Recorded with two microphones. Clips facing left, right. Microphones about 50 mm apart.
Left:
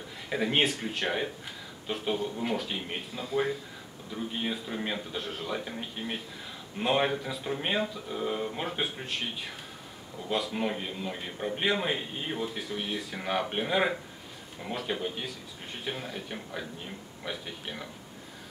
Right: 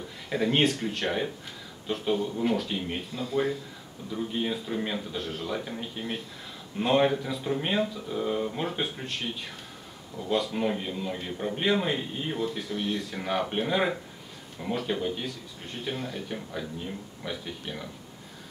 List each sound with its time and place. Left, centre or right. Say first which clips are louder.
0.3 s a man's voice: right 3 dB; centre